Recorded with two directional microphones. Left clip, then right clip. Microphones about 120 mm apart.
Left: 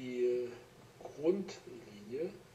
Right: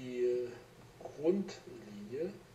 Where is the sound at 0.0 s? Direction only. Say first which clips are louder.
Even; 20° left (ahead or behind).